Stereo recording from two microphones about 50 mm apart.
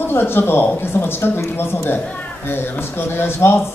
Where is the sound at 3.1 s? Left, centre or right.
Left.